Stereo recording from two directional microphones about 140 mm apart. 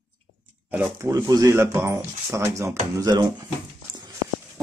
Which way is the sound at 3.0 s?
30° right (ahead or behind).